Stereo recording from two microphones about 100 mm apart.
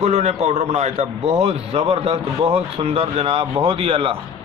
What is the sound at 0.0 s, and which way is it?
Speech, 90° right.